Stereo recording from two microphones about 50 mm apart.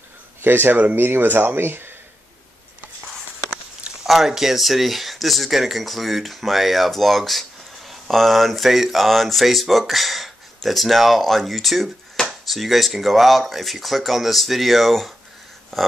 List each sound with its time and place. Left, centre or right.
0.4 s speech: right
4.0 s speech: centre